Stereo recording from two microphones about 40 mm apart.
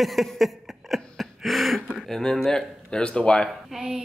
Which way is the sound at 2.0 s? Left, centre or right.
Centre.